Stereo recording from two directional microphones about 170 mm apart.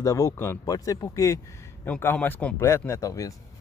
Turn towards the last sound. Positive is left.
turn(degrees=20)  # may be behind; listen again after turning